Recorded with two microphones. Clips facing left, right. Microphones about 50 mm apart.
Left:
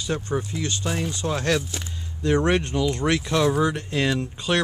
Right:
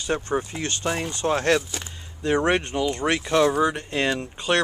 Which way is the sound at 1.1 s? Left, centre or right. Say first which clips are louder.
Right 3 dB; right.